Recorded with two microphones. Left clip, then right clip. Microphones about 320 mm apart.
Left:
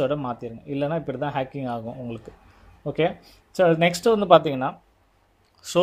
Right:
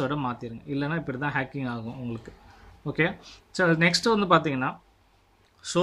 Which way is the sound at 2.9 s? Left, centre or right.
Centre.